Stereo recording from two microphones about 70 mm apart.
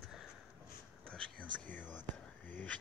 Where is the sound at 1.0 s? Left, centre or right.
Centre.